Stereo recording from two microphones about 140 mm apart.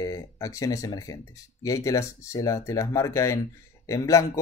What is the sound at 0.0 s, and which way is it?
Speech, 25° left (ahead or behind).